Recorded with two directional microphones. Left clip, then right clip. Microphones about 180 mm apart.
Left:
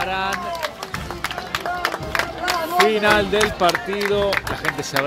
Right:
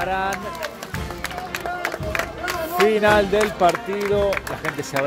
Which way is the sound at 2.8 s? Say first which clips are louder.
Right 1 dB; 20° right (ahead or behind).